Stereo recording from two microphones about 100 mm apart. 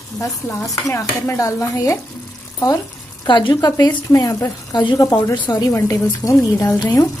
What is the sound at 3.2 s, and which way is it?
A woman's voice, 50° left (ahead or behind).